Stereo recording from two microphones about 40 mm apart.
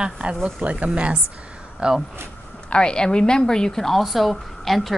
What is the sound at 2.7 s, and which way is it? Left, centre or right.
A woman's voice, left.